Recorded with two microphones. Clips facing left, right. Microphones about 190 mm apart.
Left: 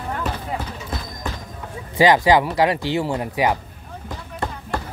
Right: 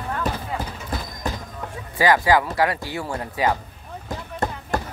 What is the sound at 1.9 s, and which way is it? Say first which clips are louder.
Speech: left 3 dB; 20° left (ahead or behind).